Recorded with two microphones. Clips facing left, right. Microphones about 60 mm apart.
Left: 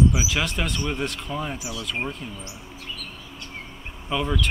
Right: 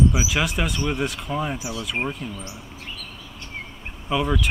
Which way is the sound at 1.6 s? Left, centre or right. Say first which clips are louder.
Right 3 dB; right.